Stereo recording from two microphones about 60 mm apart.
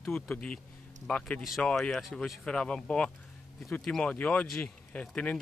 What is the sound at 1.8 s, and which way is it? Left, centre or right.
Speech, centre.